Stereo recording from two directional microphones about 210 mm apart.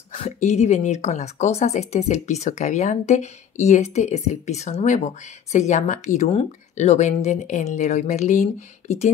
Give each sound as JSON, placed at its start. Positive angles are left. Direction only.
{"t": 0.1, "sound": "speech", "side_deg": 30}